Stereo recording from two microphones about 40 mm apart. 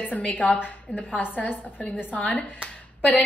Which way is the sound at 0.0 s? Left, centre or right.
Left.